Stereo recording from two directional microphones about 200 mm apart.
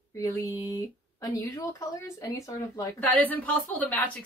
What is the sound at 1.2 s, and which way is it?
A woman's voice, 15° left (ahead or behind).